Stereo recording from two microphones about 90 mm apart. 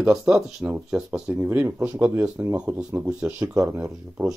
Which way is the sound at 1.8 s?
15° right (ahead or behind).